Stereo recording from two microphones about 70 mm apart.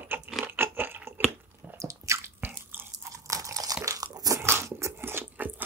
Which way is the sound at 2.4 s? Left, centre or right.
Right.